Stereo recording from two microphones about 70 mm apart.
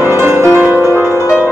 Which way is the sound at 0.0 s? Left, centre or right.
Right.